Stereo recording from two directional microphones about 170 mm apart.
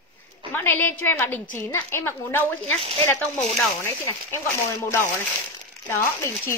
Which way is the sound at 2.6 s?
35° right (ahead or behind).